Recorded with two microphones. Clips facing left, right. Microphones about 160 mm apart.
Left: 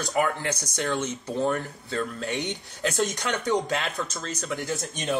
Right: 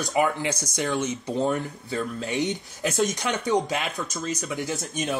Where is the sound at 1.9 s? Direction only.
5° right (ahead or behind).